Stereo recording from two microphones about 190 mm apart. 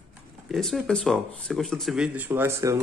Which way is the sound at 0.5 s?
Centre (ahead or behind).